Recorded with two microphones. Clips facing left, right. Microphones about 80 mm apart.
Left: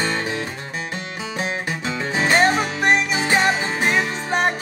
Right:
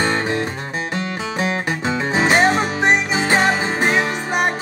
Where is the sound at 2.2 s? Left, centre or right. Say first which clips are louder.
Right 1 dB; centre.